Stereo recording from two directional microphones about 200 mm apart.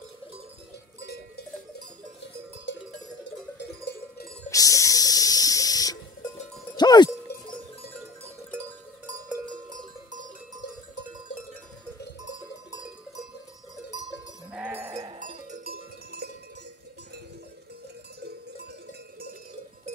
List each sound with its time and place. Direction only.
2.7 s cowbell: 65° left (ahead or behind)
4.5 s a sound: 15° left (ahead or behind)
6.8 s cowbell: 20° left (ahead or behind)
8.5 s cowbell: 15° right (ahead or behind)
14.5 s sheep: 10° right (ahead or behind)
15.1 s cowbell: 40° right (ahead or behind)